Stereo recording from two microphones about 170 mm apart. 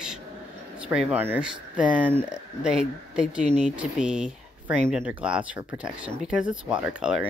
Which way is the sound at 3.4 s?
40° right (ahead or behind).